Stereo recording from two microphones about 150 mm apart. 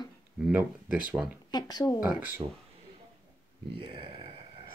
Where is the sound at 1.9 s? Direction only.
10° right (ahead or behind).